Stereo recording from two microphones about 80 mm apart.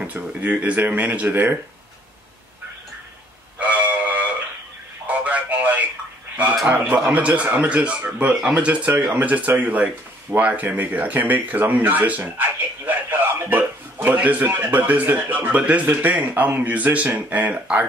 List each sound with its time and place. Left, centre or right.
0.0 s a man's voice: centre
3.5 s a sound: centre
5.0 s radio: centre
6.7 s a man's voice: centre